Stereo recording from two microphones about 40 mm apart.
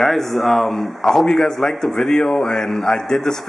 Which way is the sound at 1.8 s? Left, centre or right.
Centre.